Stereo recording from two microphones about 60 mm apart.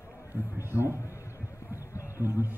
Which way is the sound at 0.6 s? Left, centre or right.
Right.